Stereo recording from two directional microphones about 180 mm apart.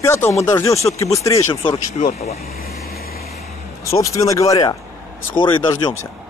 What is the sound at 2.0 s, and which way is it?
Speech, 40° left (ahead or behind).